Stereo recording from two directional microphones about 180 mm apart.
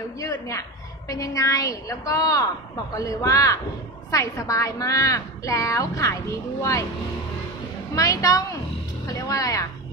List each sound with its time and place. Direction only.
0.2 s a woman's voice: 15° left (ahead or behind)
7.9 s a woman's voice: 20° left (ahead or behind)